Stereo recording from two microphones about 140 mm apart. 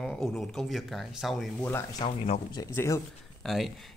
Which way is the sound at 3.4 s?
Centre (ahead or behind).